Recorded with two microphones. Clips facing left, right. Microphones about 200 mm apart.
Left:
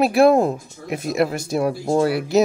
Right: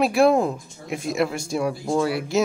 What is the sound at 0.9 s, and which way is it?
Speech, 5° left (ahead or behind).